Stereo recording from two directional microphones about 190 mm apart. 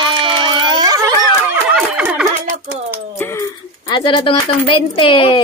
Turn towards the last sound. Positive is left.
turn(degrees=25)  # may be behind; listen again after turning